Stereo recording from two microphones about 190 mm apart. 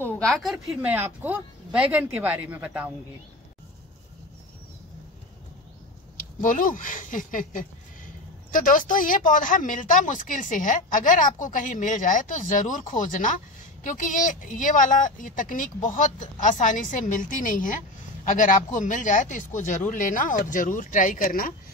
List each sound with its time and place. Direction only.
0.0 s speech: 5° left (ahead or behind)
6.4 s speech: 45° left (ahead or behind)